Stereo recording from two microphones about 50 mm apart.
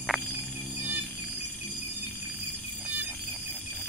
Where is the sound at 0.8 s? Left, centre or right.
Right.